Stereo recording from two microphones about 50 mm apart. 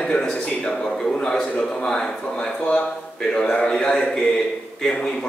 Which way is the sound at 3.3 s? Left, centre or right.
Centre.